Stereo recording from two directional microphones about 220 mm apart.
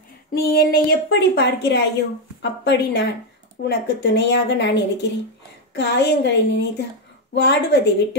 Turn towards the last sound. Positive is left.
turn(degrees=50)  # may be behind; listen again after turning